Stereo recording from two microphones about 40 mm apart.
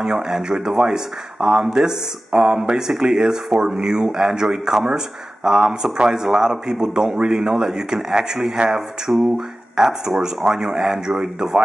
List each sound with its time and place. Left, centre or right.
0.1 s speech: right